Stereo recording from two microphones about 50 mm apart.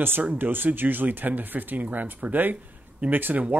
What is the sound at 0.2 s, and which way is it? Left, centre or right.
Speech, right.